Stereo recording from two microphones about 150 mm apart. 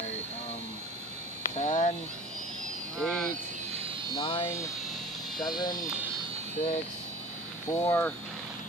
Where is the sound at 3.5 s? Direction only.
45° right (ahead or behind).